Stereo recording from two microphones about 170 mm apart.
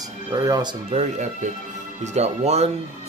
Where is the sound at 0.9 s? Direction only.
45° right (ahead or behind).